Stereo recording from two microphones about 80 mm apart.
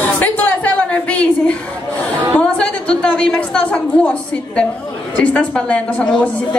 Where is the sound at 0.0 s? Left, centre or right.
Centre.